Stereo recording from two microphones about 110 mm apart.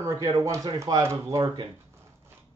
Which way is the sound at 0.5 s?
30° right (ahead or behind).